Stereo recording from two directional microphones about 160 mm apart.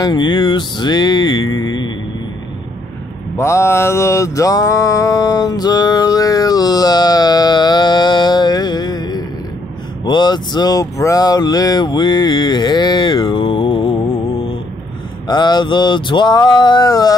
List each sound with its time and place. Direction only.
0.0 s speech: 30° left (ahead or behind)
3.3 s mantra: 15° left (ahead or behind)
10.0 s speech: 25° left (ahead or behind)
15.2 s speech: 25° left (ahead or behind)